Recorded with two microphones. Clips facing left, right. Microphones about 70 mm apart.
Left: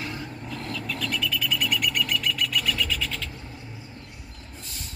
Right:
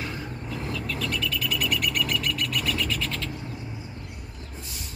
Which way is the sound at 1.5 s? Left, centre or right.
Centre.